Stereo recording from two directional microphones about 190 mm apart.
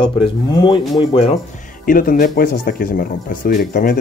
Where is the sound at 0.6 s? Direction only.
25° left (ahead or behind).